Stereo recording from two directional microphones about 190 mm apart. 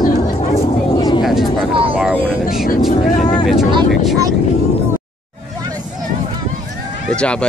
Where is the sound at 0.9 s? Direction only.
20° left (ahead or behind).